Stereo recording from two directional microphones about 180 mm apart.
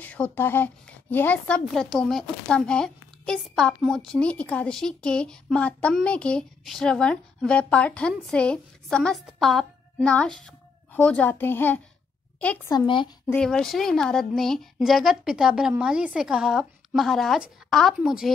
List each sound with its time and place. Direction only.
0.0 s a woman's voice: 10° left (ahead or behind)
12.7 s speech: 25° left (ahead or behind)
13.3 s a woman's voice: 5° left (ahead or behind)